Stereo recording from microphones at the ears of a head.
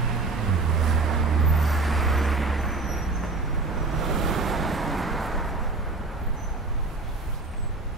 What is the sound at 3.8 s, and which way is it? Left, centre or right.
Waves, right.